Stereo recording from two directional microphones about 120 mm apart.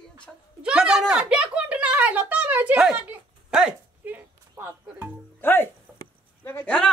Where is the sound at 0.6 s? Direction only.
10° right (ahead or behind).